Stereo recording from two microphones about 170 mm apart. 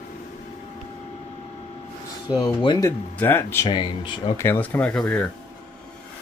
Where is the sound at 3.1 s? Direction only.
10° left (ahead or behind).